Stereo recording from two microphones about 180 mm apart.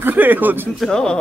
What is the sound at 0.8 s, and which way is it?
Speech, 5° left (ahead or behind).